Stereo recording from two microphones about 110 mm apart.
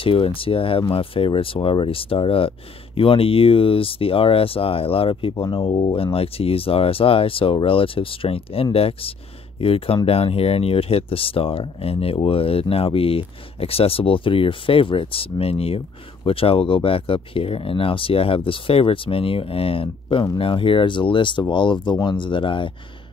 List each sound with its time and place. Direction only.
0.0 s speech: 55° left (ahead or behind)